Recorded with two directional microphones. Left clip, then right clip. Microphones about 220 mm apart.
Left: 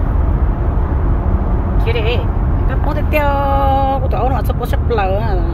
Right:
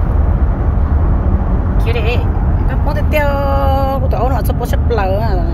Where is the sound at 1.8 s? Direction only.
Centre (ahead or behind).